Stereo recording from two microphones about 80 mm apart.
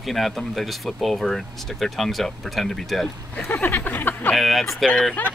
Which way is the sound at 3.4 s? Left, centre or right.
Left.